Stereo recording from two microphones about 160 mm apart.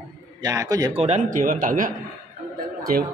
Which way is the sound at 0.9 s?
45° right (ahead or behind).